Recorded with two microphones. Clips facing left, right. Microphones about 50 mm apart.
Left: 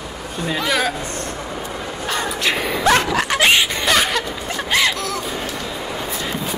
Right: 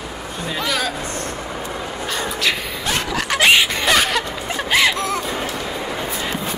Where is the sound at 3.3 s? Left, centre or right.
Centre.